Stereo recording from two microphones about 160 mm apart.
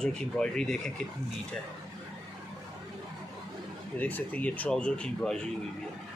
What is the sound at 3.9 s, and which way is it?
Speech, 10° left (ahead or behind).